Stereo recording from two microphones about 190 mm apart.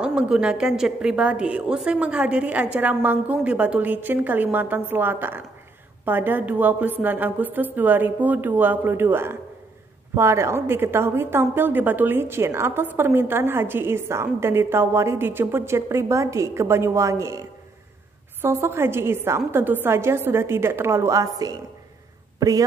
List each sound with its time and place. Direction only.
0.0 s a woman's voice: 5° right (ahead or behind)